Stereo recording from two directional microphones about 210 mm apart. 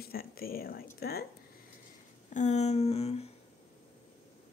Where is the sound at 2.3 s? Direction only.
35° left (ahead or behind).